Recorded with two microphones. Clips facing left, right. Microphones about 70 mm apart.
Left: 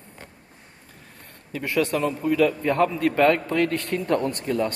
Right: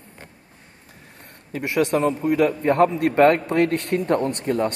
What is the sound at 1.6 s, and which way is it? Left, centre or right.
Speech, right.